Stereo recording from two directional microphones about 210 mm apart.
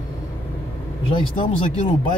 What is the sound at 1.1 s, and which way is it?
Speech, 25° left (ahead or behind).